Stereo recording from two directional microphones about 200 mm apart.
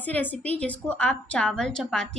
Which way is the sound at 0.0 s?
10° left (ahead or behind).